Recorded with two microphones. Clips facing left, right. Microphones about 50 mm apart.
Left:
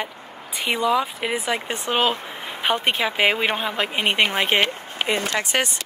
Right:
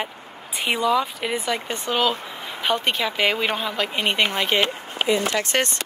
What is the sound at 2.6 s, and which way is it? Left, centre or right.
Speech, left.